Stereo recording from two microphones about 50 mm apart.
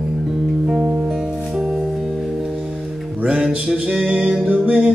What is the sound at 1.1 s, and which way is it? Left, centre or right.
Music, centre.